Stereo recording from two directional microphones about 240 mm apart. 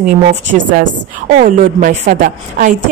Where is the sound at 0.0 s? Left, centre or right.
Right.